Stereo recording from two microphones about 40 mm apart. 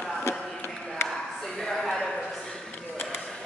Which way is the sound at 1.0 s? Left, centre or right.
Centre.